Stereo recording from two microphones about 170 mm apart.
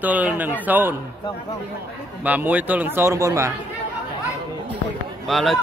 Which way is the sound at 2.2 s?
10° right (ahead or behind).